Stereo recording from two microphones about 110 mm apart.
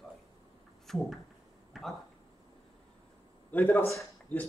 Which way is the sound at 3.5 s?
15° left (ahead or behind).